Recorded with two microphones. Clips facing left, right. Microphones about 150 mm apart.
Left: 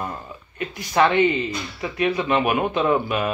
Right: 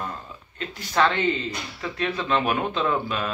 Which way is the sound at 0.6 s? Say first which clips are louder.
Left 3 dB; 15° left (ahead or behind).